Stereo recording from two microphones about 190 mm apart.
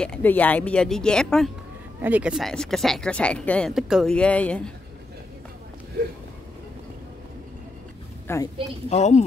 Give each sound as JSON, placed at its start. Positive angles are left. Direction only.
{"t": 0.0, "sound": "speech", "side_deg": 5}
{"t": 2.0, "sound": "speech", "side_deg": -10}
{"t": 8.3, "sound": "a woman's voice", "side_deg": 15}
{"t": 8.8, "sound": "speech", "side_deg": 35}